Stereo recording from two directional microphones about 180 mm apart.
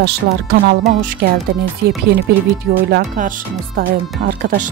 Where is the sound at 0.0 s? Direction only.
65° right (ahead or behind).